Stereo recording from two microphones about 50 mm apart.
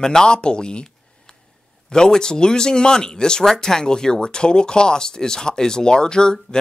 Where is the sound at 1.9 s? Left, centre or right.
Centre.